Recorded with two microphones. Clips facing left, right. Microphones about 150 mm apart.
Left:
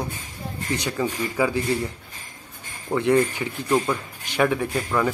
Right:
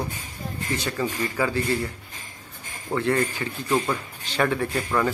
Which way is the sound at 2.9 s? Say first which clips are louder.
Left 4 dB; 15° left (ahead or behind).